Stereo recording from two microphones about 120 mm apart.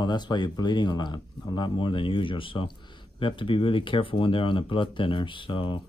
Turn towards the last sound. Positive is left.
turn(degrees=45)  # may be behind; listen again after turning